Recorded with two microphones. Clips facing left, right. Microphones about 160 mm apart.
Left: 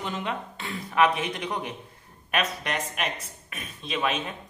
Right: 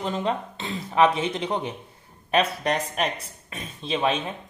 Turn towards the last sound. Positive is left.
turn(degrees=-30)  # may be behind; listen again after turning